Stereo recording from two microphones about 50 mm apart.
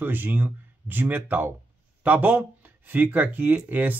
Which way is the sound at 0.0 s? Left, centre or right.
Right.